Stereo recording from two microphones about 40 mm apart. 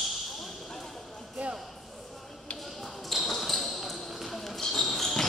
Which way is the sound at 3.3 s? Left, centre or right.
Centre.